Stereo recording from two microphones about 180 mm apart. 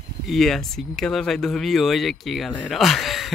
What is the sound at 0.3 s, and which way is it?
Speech, centre (ahead or behind).